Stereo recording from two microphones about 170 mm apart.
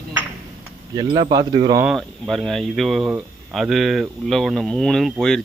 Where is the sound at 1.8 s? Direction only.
Centre (ahead or behind).